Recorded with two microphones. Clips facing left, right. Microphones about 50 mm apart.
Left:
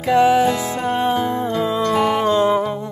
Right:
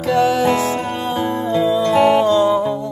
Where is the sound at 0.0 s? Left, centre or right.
Centre.